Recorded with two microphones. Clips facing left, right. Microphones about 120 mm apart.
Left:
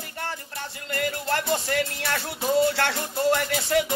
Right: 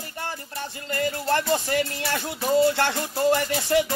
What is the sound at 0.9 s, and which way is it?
Music, 25° right (ahead or behind).